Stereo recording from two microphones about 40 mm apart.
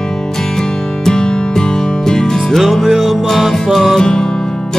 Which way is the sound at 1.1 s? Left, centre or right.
Centre.